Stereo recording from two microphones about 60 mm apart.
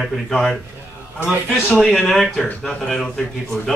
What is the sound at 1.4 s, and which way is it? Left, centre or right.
Speech, left.